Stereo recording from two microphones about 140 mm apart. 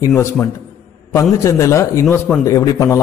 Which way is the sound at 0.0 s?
20° left (ahead or behind).